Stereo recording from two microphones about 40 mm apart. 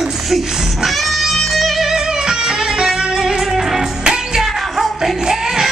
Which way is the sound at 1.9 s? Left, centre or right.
Centre.